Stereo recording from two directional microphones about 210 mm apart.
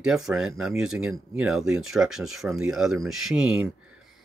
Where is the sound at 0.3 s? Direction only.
Centre (ahead or behind).